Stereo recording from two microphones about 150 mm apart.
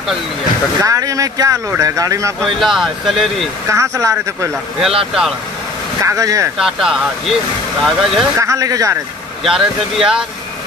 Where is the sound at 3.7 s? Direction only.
20° right (ahead or behind).